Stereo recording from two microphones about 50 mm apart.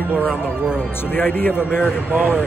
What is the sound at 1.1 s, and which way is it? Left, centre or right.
Speech, left.